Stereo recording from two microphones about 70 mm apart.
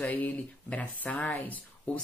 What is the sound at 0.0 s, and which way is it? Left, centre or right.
A woman's voice, left.